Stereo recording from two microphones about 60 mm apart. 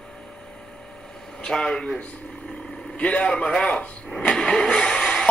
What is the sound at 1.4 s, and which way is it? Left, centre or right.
Speech, centre.